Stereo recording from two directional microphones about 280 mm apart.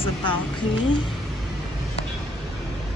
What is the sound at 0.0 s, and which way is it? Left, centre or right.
Speech, centre.